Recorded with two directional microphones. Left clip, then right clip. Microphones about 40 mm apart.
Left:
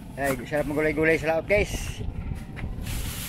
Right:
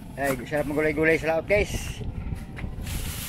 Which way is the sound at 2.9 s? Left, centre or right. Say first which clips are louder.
Even; right.